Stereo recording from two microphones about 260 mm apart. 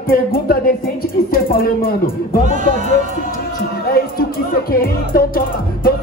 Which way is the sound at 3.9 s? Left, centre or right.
Left.